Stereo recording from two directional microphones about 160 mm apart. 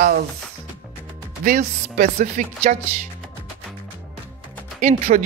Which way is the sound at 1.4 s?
60° right (ahead or behind).